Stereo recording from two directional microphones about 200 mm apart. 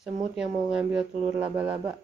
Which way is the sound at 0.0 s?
5° right (ahead or behind).